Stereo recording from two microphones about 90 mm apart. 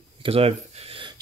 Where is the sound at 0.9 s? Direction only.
65° right (ahead or behind).